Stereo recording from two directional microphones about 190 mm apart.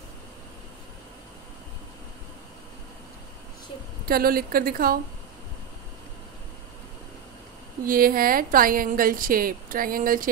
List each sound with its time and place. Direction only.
4.1 s a woman's voice: 50° right (ahead or behind)
7.8 s a woman's voice: 50° right (ahead or behind)